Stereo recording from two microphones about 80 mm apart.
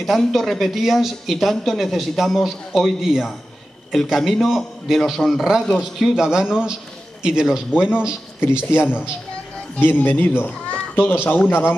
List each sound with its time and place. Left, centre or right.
0.0 s speech: centre
8.7 s a man's voice: left